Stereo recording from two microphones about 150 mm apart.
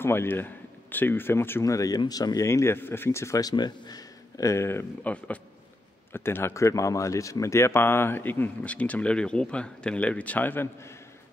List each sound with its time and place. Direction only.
0.0 s speech: 15° left (ahead or behind)